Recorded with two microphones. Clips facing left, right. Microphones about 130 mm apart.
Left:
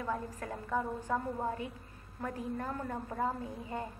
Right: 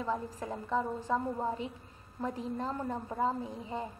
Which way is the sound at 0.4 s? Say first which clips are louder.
Right 2 dB; 20° right (ahead or behind).